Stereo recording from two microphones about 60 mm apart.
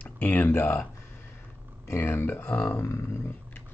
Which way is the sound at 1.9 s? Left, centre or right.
Left.